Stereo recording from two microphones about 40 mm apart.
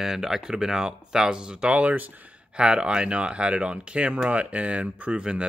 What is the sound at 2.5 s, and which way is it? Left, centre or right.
Speech, right.